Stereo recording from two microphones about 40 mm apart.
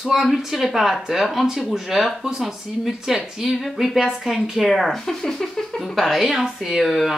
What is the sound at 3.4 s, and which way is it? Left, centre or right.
Speech, centre.